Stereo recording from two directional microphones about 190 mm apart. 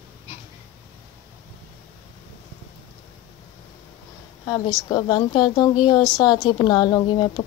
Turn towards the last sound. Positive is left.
turn(degrees=25)  # may be behind; listen again after turning